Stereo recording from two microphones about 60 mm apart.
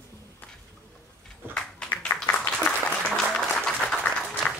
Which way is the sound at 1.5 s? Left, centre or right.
Centre.